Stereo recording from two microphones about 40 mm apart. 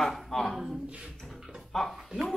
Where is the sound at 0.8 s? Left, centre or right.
Right.